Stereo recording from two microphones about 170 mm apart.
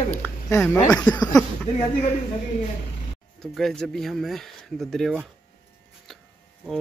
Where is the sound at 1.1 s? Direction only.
25° left (ahead or behind).